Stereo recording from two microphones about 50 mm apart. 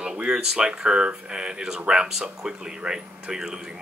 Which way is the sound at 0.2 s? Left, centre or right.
Centre.